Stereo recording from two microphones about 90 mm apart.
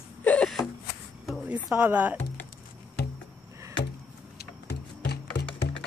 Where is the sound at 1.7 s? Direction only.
20° right (ahead or behind).